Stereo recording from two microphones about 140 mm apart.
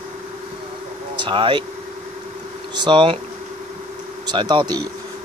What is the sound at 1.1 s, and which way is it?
Speech, 35° right (ahead or behind).